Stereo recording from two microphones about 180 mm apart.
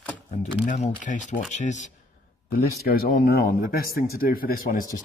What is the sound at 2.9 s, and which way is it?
Speech, 55° left (ahead or behind).